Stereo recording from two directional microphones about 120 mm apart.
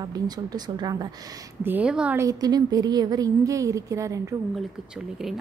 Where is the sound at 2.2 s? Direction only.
30° right (ahead or behind).